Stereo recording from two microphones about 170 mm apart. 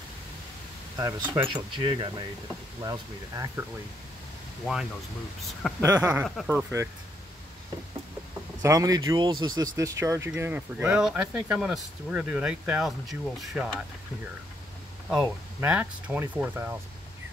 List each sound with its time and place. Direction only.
0.9 s speech: 20° right (ahead or behind)
1.5 s speech: 30° right (ahead or behind)
5.4 s speech: centre (ahead or behind)
5.9 s speech: 20° right (ahead or behind)
6.2 s speech: centre (ahead or behind)
6.5 s speech: 15° right (ahead or behind)
8.6 s speech: 20° right (ahead or behind); by 13.8 s centre (ahead or behind)
15.0 s speech: 5° right (ahead or behind)